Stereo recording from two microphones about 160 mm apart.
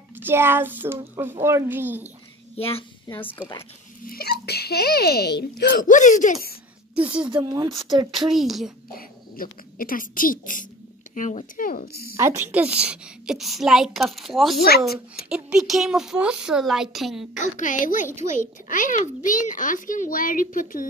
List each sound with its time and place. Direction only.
0.1 s a child's voice: 15° right (ahead or behind)
2.5 s a child's voice: 35° left (ahead or behind)
3.2 s speech: 10° left (ahead or behind)
4.0 s a child's voice: 70° left (ahead or behind); by 5.9 s 90° left
5.9 s a woman's voice: 50° left (ahead or behind)
7.0 s a child's voice: 10° right (ahead or behind)
7.2 s speech: 25° right (ahead or behind)
8.3 s a woman's voice: centre (ahead or behind)
8.9 s a child's voice: 60° left (ahead or behind)
12.2 s a woman's voice: 15° right (ahead or behind)
17.4 s a woman's voice: 55° left (ahead or behind)